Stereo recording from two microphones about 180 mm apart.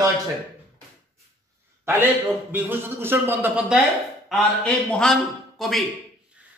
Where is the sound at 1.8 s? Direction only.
10° right (ahead or behind).